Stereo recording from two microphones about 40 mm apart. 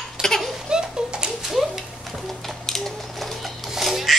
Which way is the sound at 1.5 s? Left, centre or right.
Centre.